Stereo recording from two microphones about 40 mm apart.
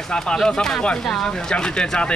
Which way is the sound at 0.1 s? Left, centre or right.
Centre.